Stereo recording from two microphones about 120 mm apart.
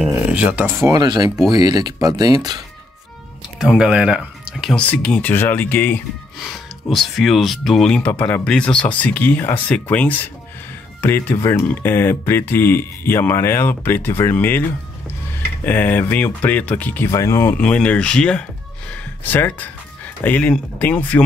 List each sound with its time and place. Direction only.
0.3 s speech: 10° right (ahead or behind)
0.9 s speech: 35° right (ahead or behind)
3.5 s speech: 5° right (ahead or behind)
4.7 s speech: 10° left (ahead or behind)
6.4 s speech: centre (ahead or behind); by 14.6 s 15° left (ahead or behind)
15.6 s speech: 15° left (ahead or behind)
17.1 s speech: 25° left (ahead or behind)